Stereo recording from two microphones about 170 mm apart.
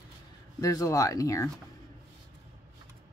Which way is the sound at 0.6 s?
20° left (ahead or behind).